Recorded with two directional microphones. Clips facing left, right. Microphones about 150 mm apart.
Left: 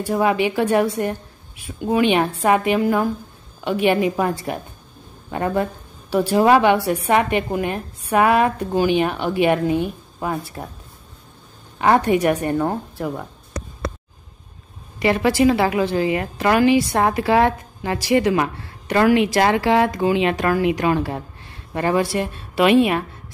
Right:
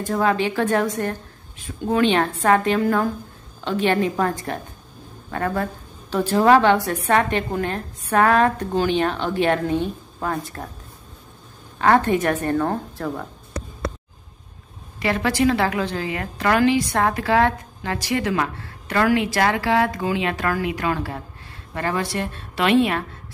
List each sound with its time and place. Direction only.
0.0 s a woman's voice: 15° left (ahead or behind)
11.8 s a woman's voice: 15° left (ahead or behind)
15.0 s a woman's voice: 15° left (ahead or behind)